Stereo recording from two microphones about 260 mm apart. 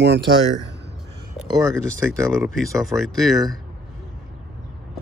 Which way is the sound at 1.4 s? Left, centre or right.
Centre.